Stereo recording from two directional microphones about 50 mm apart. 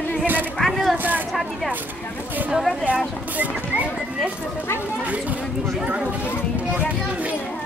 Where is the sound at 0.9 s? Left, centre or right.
Right.